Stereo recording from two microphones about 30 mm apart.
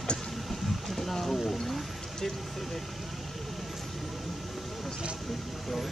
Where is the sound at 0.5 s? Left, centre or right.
Centre.